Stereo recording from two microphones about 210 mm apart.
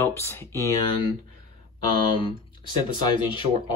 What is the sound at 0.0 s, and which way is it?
Speech, 10° left (ahead or behind).